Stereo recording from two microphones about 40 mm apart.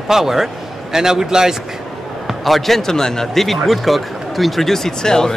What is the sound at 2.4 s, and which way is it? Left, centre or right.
A man's voice, centre.